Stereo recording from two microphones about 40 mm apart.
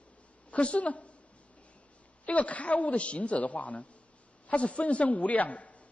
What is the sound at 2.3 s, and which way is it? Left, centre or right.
Speech, left.